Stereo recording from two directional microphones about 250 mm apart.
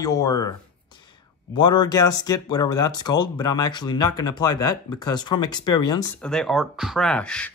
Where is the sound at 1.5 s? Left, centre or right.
Centre.